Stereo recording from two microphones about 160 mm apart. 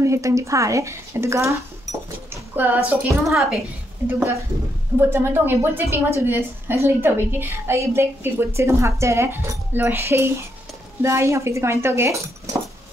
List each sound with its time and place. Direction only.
0.0 s a woman's voice: 20° right (ahead or behind)